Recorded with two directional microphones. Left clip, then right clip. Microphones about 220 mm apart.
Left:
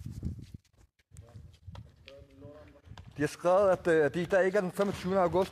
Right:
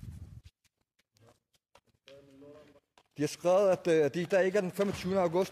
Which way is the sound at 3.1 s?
Centre (ahead or behind).